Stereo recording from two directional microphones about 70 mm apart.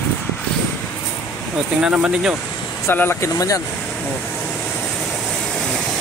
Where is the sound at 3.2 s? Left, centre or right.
Left.